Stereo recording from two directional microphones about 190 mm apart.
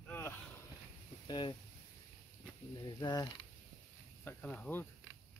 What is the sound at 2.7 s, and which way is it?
Speech, 20° left (ahead or behind).